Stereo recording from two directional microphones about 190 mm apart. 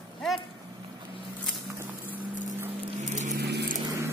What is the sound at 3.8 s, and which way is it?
Vehicle, 15° right (ahead or behind).